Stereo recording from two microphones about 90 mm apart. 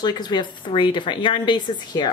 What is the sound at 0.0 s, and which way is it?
A woman's voice, 55° left (ahead or behind).